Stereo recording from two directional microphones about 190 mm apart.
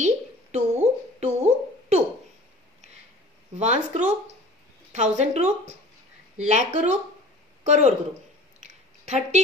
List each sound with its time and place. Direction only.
0.0 s a sound: 35° right (ahead or behind)
3.5 s a woman's voice: 35° right (ahead or behind)
9.0 s a woman's voice: 35° right (ahead or behind)